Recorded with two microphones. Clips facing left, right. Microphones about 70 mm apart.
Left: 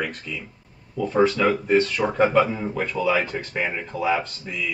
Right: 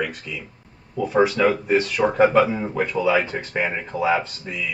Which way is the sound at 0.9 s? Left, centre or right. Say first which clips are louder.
Right 1 dB; centre.